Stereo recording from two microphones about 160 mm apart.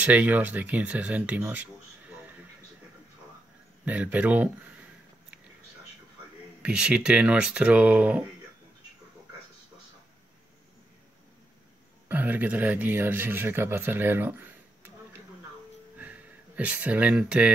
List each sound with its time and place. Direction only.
0.0 s speech: 10° right (ahead or behind)
3.8 s speech: 10° right (ahead or behind)
6.6 s speech: 5° right (ahead or behind)
12.1 s speech: 10° right (ahead or behind)
16.0 s a sound: 10° right (ahead or behind)